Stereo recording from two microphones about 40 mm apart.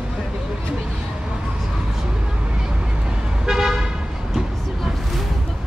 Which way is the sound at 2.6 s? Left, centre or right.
Centre.